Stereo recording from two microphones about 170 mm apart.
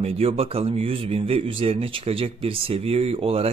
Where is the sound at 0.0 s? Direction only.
35° right (ahead or behind).